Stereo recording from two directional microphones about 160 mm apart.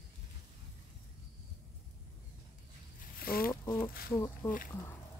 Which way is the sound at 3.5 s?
15° left (ahead or behind).